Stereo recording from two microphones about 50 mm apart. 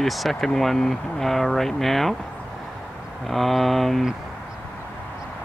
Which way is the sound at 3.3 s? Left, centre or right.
Centre.